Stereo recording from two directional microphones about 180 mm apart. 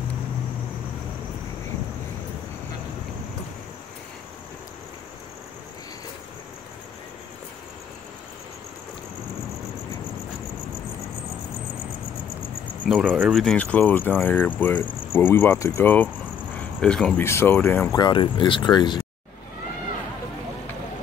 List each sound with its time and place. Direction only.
12.8 s speech: 5° right (ahead or behind); by 17.9 s 10° left (ahead or behind)
17.9 s speech: 25° left (ahead or behind)